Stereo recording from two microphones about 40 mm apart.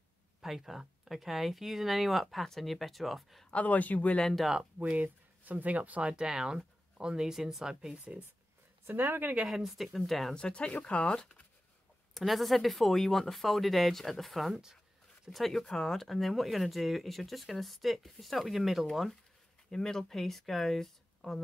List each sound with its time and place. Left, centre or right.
0.4 s speech: centre
3.4 s speech: left
4.9 s speech: right
6.1 s speech: centre
7.9 s speech: right
8.8 s speech: right
9.8 s speech: centre
10.3 s speech: left
12.1 s speech: centre
15.6 s speech: centre
19.7 s speech: centre